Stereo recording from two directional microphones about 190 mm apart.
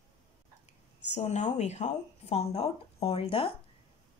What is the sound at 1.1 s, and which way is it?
Speech, 35° left (ahead or behind).